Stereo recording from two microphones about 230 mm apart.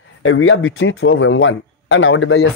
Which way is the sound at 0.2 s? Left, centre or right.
Left.